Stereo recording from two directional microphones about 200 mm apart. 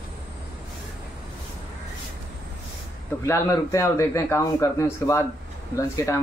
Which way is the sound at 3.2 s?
15° left (ahead or behind).